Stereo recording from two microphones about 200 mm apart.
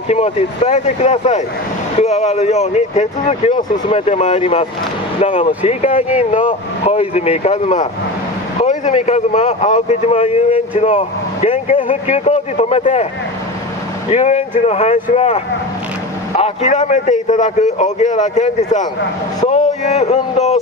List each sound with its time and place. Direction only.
0.1 s speech: 35° left (ahead or behind)
14.1 s speech: 35° left (ahead or behind)